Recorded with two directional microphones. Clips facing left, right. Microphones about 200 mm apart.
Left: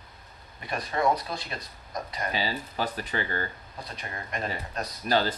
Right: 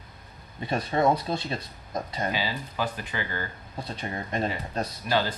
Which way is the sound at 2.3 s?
35° left (ahead or behind).